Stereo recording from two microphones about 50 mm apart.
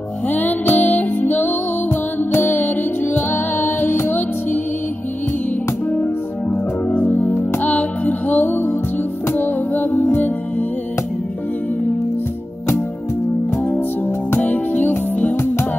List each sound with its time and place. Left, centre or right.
0.3 s music: left
6.5 s music: left
14.3 s music: left